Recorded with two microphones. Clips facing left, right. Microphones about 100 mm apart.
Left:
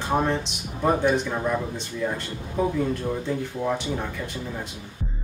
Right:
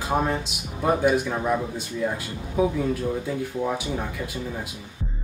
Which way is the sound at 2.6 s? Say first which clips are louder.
Right 2 dB; 5° right (ahead or behind).